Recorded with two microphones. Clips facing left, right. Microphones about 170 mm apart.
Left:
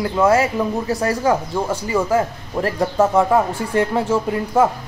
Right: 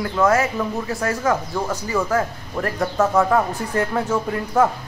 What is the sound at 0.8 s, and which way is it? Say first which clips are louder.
Speech: left 3 dB; 35° left (ahead or behind).